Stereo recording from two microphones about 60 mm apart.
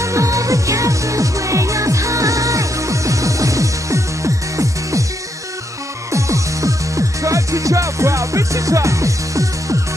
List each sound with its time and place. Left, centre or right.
0.0 s music: right
6.1 s music: right